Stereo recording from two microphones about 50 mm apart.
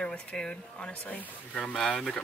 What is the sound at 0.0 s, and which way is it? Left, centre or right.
Speech, left.